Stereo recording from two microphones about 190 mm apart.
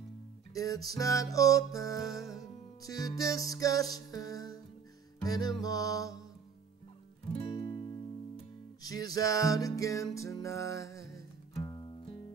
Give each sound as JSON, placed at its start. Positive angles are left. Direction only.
{"t": 0.6, "sound": "music", "side_deg": 20}
{"t": 7.3, "sound": "music", "side_deg": 30}